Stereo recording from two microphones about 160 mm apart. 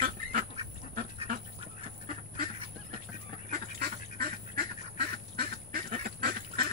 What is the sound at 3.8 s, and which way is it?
Duck, 70° right (ahead or behind).